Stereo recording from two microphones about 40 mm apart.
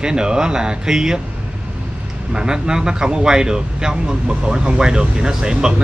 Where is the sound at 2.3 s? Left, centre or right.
Centre.